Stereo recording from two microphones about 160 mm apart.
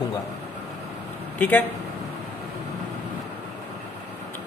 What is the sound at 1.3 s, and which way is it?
Speech, 10° left (ahead or behind).